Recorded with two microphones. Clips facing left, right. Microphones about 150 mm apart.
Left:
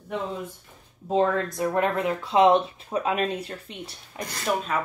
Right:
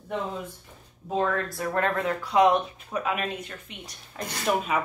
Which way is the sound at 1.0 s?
20° left (ahead or behind).